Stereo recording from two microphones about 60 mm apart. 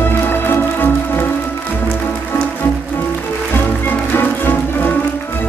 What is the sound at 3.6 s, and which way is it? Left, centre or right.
Music, left.